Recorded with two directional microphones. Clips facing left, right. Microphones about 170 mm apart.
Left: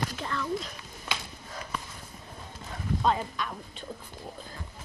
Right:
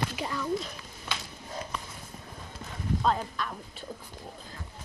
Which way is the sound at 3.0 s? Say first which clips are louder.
Left 1 dB; 5° left (ahead or behind).